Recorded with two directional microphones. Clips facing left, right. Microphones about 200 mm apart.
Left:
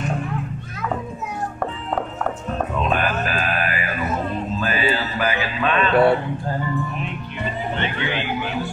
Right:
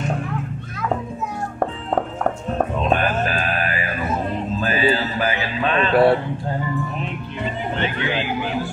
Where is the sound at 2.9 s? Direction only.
35° right (ahead or behind).